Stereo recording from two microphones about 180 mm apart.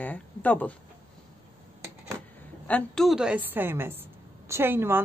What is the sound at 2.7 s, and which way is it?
Speech, centre (ahead or behind).